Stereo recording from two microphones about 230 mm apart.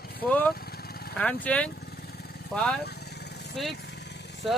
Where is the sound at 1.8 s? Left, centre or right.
Left.